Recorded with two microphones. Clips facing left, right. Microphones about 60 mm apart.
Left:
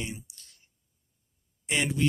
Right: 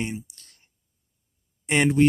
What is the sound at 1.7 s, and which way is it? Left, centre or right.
Speech, right.